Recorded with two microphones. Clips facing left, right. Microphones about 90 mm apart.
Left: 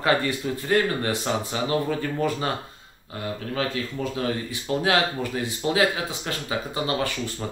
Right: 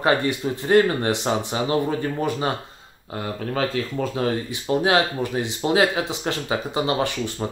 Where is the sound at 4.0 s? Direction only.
50° right (ahead or behind).